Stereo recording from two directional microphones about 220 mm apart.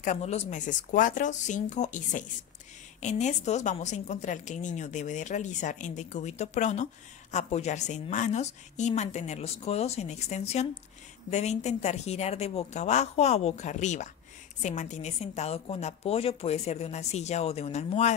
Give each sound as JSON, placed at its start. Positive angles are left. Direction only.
{"t": 0.0, "sound": "a woman's voice", "side_deg": 30}